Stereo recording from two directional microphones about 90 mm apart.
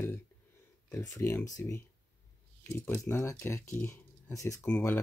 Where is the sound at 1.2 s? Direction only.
30° left (ahead or behind).